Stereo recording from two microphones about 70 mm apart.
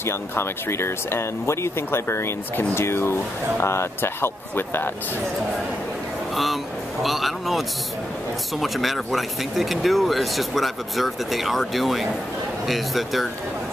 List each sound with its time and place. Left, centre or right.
0.0 s speech: left
6.3 s speech: centre